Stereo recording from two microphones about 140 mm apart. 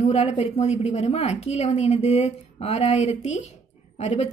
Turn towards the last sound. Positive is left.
turn(degrees=50)  # may be behind; listen again after turning